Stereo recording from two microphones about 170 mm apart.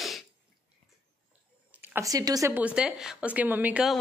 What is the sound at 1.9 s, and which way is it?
Speech, 20° right (ahead or behind).